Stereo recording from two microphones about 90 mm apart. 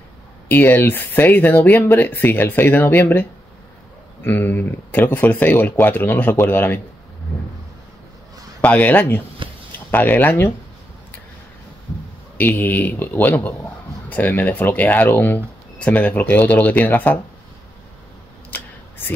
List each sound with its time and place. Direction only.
0.5 s speech: 20° left (ahead or behind)
8.5 s speech: 15° left (ahead or behind)
9.4 s a sound: 70° right (ahead or behind)
9.8 s speech: 20° left (ahead or behind)
12.4 s speech: 20° left (ahead or behind)